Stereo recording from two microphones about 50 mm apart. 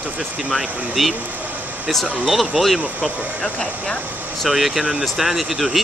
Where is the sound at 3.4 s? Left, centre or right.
Centre.